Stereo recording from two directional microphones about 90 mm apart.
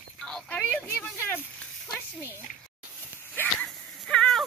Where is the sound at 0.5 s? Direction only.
20° left (ahead or behind).